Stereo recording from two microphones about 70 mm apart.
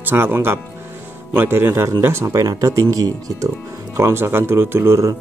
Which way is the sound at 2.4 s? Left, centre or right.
Right.